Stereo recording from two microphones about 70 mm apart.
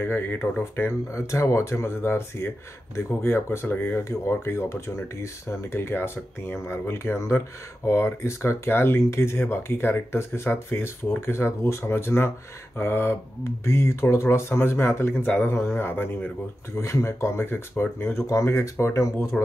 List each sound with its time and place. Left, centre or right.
0.0 s speech: left
1.1 s speech: left
16.7 s speech: left
18.3 s speech: left